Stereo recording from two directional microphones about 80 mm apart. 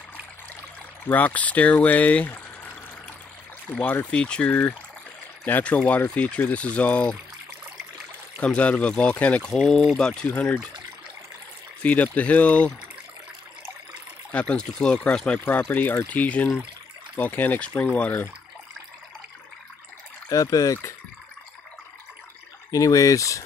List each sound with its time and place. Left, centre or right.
1.0 s speech: left
3.8 s speech: left
4.1 s speech: centre
8.4 s speech: centre
11.8 s speech: centre
14.3 s speech: centre
20.2 s speech: left
22.7 s speech: left